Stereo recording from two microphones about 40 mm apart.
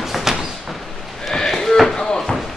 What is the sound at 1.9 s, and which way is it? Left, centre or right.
Slam, centre.